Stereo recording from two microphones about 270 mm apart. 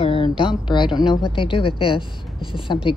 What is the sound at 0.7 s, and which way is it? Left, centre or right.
Speech, centre.